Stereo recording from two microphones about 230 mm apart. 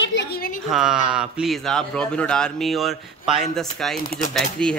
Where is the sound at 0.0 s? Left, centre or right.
Left.